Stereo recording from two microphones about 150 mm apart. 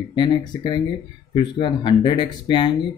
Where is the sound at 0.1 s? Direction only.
30° left (ahead or behind).